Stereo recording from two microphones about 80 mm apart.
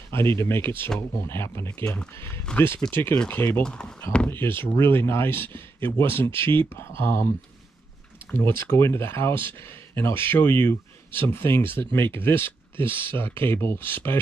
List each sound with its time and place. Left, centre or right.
0.1 s speech: left
3.6 s speech: centre
4.3 s speech: left
8.3 s speech: left